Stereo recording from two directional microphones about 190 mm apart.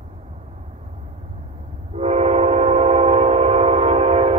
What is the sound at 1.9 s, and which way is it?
Train, 35° right (ahead or behind).